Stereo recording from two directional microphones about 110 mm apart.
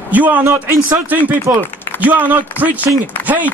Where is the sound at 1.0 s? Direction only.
15° right (ahead or behind).